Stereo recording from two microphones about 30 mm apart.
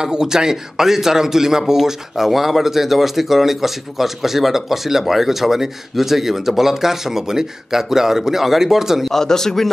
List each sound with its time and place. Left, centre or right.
0.0 s speech: right
9.1 s speech: centre